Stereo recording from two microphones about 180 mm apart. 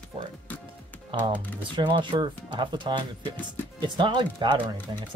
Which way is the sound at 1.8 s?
25° right (ahead or behind).